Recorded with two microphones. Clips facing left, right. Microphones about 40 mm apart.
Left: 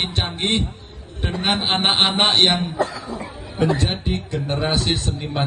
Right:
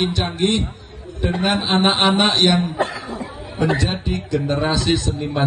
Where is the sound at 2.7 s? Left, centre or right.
Right.